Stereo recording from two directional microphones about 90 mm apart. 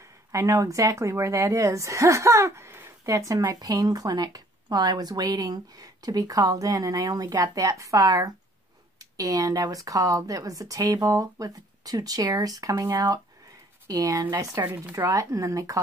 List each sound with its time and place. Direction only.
0.3 s a woman's voice: 35° right (ahead or behind)